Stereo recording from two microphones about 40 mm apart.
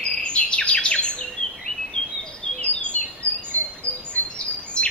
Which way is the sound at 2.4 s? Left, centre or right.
Left.